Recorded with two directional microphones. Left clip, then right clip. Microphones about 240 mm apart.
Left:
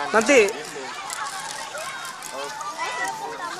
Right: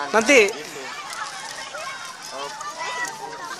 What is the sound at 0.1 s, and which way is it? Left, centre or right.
Speech, centre.